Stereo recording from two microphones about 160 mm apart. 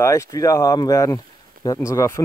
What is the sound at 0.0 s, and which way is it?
Speech, 20° left (ahead or behind).